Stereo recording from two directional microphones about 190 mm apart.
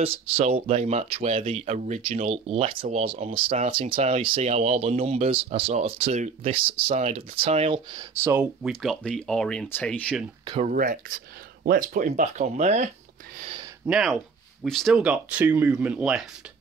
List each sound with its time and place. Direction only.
0.0 s speech: 30° right (ahead or behind)
8.2 s speech: 10° right (ahead or behind)
10.6 s speech: 45° right (ahead or behind)
13.8 s speech: 5° right (ahead or behind)